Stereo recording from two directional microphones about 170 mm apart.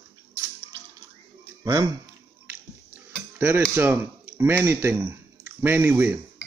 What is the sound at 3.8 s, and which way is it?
Speech, 10° right (ahead or behind).